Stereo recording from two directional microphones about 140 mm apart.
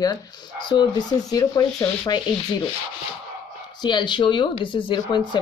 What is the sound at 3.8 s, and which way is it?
Speech, 35° left (ahead or behind).